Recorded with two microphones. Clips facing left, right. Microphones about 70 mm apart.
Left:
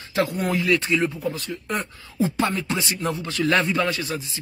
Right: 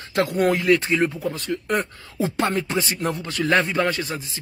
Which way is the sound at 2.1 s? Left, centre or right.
Right.